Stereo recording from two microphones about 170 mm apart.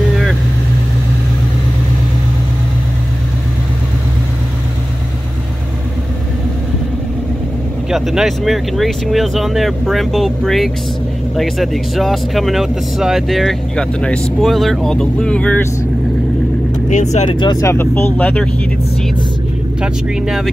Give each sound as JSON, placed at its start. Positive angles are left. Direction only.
{"t": 7.9, "sound": "speech", "side_deg": 0}
{"t": 16.9, "sound": "speech", "side_deg": 40}
{"t": 17.4, "sound": "speech", "side_deg": 20}
{"t": 19.8, "sound": "speech", "side_deg": -5}